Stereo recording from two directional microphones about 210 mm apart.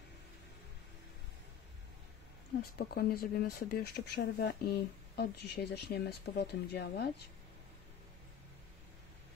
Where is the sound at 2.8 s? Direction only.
45° left (ahead or behind).